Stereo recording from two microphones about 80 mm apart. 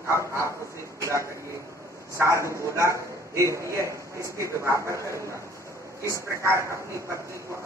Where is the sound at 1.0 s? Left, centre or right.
Right.